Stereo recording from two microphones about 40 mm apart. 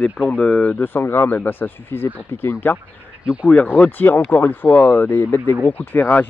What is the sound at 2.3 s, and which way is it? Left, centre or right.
Speech, left.